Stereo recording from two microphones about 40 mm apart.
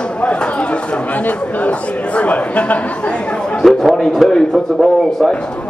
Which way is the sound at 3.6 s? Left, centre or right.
Centre.